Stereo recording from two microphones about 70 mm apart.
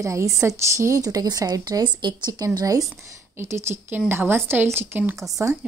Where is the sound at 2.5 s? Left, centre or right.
Right.